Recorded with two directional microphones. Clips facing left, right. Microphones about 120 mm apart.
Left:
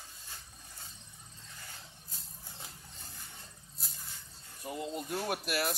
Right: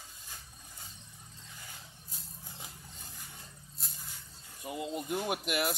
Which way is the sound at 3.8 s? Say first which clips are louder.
Right 1 dB; centre (ahead or behind).